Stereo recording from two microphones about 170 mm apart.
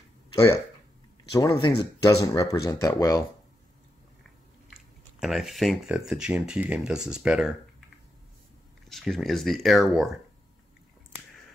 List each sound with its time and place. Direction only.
0.3 s a sound: 20° left (ahead or behind)
1.3 s speech: 25° left (ahead or behind)
4.6 s speech: centre (ahead or behind)
8.8 s speech: centre (ahead or behind)